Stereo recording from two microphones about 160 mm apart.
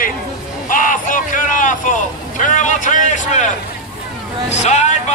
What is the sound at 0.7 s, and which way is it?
Vehicle, 55° left (ahead or behind).